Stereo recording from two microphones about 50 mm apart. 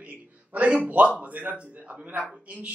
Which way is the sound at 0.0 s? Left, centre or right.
Right.